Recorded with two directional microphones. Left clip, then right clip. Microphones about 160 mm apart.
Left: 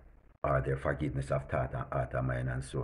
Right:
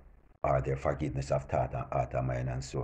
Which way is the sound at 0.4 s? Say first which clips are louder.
Right 2 dB; 20° left (ahead or behind).